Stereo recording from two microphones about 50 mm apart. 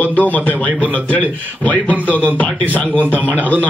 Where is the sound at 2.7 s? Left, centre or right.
Left.